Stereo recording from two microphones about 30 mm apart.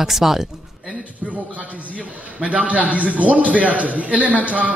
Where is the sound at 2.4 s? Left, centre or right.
Right.